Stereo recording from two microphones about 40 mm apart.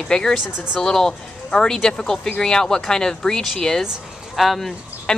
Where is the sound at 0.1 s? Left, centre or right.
Centre.